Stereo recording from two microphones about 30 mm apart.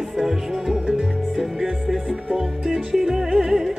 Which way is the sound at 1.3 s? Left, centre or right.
Centre.